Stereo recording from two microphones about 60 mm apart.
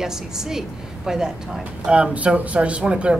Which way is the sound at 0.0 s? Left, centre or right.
Centre.